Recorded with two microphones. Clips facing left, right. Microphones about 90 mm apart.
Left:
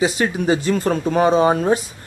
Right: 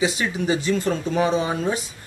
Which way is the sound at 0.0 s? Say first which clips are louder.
Left 4 dB; 40° left (ahead or behind).